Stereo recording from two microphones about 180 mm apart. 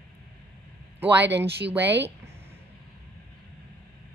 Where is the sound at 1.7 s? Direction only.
10° right (ahead or behind).